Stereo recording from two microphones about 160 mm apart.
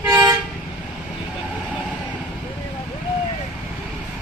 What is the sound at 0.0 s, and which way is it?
Toot, 20° right (ahead or behind).